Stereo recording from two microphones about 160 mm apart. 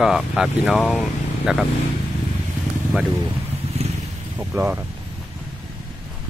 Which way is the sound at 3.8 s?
40° right (ahead or behind).